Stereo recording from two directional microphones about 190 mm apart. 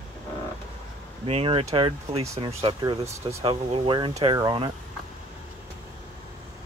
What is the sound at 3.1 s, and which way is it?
Speech, 15° right (ahead or behind).